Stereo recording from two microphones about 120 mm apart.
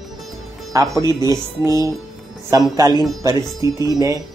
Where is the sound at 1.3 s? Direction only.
30° right (ahead or behind).